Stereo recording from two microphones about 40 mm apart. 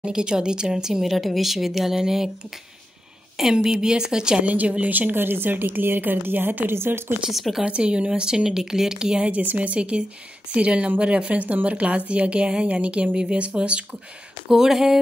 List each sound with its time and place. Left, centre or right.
0.0 s speech: right
1.1 s speech: centre
3.4 s speech: centre
3.7 s speech: centre
4.4 s a woman's voice: right
5.1 s a woman's voice: right
6.7 s speech: right
7.2 s speech: centre
7.6 s speech: right
9.3 s a woman's voice: right
14.5 s speech: centre